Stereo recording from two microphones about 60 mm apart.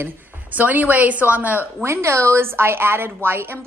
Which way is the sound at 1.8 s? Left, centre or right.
Right.